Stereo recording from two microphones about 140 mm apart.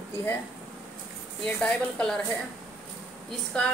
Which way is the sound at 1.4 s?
5° left (ahead or behind).